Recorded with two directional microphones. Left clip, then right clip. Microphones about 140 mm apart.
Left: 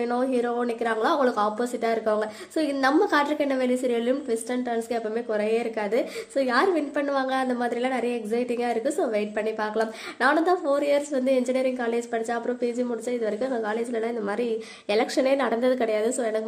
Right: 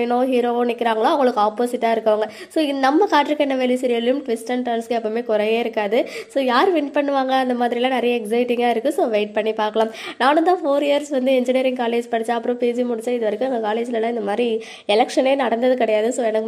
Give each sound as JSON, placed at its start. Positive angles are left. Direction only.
{"t": 0.0, "sound": "a woman's voice", "side_deg": -20}